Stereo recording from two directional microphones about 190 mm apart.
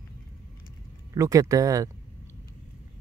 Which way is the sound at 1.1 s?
15° right (ahead or behind).